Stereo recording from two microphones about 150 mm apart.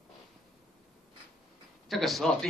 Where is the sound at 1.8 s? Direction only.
Centre (ahead or behind).